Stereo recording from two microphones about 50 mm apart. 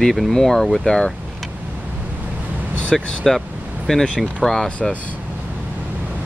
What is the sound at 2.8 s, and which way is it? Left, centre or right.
Speech, centre.